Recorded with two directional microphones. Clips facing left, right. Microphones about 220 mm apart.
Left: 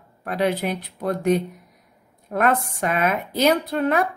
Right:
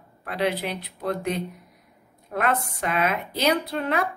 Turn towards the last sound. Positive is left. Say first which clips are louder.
# left 5 dB
turn(degrees=50)  # may be behind; listen again after turning